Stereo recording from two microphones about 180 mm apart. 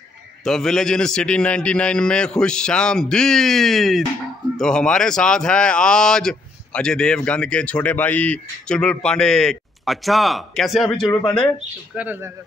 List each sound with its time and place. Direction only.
0.4 s speech: centre (ahead or behind)
11.5 s speech: 5° right (ahead or behind)